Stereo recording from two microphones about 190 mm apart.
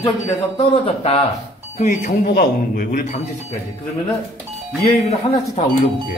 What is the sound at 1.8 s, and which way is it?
Speech, 40° left (ahead or behind).